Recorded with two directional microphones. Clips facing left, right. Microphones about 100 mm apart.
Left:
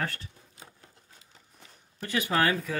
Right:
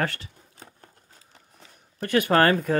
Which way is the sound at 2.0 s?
60° right (ahead or behind).